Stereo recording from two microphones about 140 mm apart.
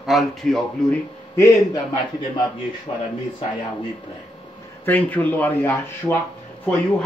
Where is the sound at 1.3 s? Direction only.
25° left (ahead or behind).